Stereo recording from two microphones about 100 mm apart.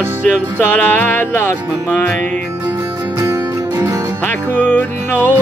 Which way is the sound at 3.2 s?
30° right (ahead or behind).